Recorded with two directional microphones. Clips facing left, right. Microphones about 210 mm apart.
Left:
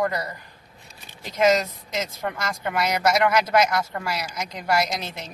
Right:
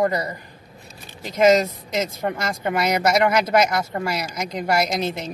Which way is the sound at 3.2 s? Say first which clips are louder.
Right 2 dB; 20° right (ahead or behind).